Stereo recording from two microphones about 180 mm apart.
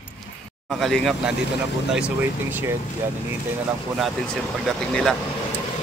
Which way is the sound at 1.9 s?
10° right (ahead or behind).